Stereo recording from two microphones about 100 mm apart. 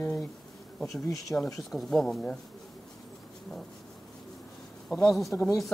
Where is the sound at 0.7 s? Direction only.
5° left (ahead or behind).